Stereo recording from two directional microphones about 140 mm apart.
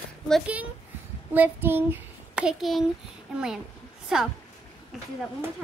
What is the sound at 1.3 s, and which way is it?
A child's voice, 15° right (ahead or behind).